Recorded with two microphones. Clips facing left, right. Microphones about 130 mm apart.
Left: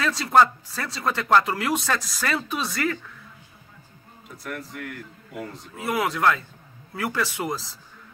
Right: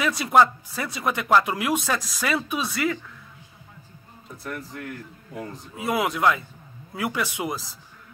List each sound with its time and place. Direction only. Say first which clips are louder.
0.0 s speech: even; 15° right (ahead or behind)
4.4 s speech: even; 25° right (ahead or behind)